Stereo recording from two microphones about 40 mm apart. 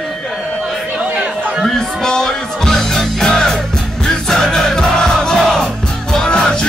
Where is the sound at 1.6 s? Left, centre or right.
Centre.